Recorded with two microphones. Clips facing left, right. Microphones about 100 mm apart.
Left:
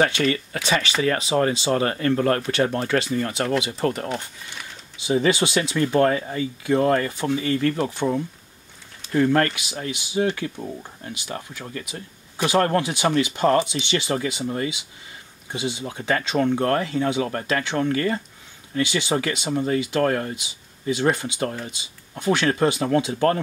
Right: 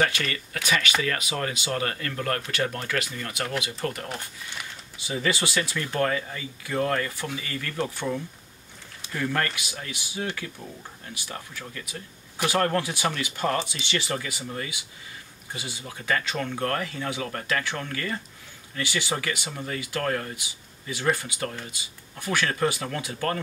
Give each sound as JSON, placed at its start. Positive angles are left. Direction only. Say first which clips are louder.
{"t": 0.0, "sound": "speech", "louder": "left 6 dB", "side_deg": 25}
{"t": 4.9, "sound": "speech", "louder": "left 8 dB", "side_deg": 20}